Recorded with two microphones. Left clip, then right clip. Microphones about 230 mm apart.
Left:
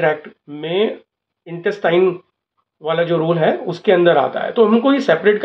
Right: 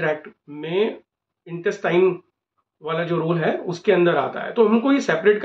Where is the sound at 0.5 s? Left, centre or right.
Centre.